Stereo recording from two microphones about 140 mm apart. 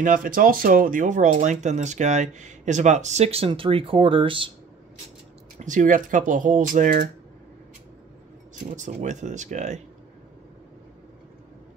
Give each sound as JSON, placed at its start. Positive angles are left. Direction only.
{"t": 0.0, "sound": "speech", "side_deg": -75}
{"t": 5.6, "sound": "speech", "side_deg": -65}
{"t": 8.7, "sound": "speech", "side_deg": -60}